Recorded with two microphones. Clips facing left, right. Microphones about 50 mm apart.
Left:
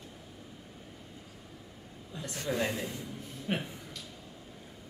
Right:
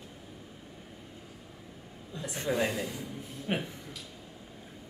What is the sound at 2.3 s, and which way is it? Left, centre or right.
Speech, right.